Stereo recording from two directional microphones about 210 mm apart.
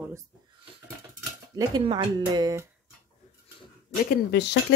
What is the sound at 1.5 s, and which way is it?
Speech, 20° right (ahead or behind).